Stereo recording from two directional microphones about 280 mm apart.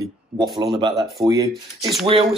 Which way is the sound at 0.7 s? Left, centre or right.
Centre.